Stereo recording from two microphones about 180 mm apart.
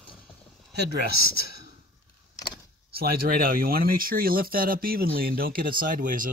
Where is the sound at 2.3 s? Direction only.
25° left (ahead or behind).